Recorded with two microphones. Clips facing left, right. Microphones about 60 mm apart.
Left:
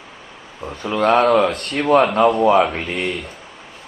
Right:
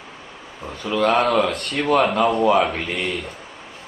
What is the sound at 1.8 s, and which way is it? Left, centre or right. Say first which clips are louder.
Speech: left 3 dB; centre.